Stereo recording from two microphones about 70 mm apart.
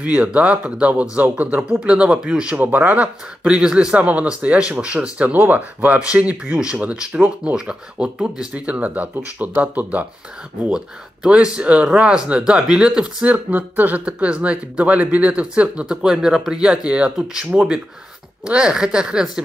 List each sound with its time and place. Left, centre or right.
0.0 s speech: right
11.2 s speech: centre